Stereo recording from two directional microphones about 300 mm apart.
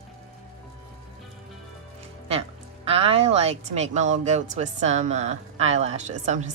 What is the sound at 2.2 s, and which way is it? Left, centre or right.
Speech, centre.